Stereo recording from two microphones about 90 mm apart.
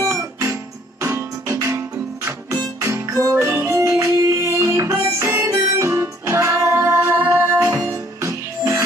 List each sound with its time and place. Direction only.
0.0 s music: 35° right (ahead or behind)
7.7 s music: 35° right (ahead or behind)